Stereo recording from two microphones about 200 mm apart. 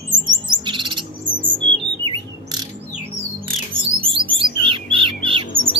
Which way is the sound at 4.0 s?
25° right (ahead or behind).